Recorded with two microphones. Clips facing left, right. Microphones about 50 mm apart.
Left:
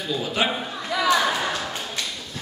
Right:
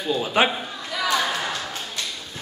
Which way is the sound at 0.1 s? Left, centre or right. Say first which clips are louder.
Right 4 dB; right.